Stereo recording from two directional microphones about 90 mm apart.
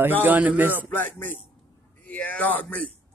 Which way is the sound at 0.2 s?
20° right (ahead or behind).